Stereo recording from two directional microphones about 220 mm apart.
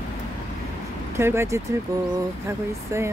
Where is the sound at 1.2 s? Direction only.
10° right (ahead or behind).